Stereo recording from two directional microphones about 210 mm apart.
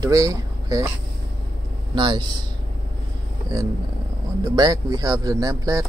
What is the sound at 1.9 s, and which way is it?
Speech, 20° right (ahead or behind).